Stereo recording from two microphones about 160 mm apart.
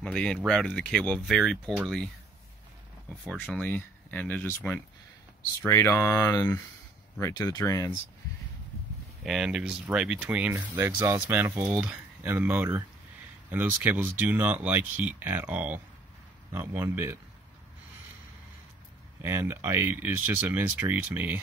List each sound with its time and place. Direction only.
0.0 s speech: 5° left (ahead or behind)
3.3 s speech: 5° right (ahead or behind)
3.5 s speech: 10° left (ahead or behind)
5.6 s speech: 15° left (ahead or behind)
9.2 s speech: 5° right (ahead or behind)
19.2 s speech: 15° right (ahead or behind)